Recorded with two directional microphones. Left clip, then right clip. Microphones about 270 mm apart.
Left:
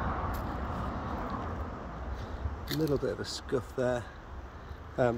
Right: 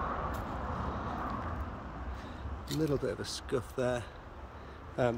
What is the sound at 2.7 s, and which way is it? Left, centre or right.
Speech, centre.